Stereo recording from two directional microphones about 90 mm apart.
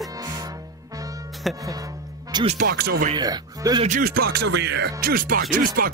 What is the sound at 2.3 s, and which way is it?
Speech, 55° right (ahead or behind).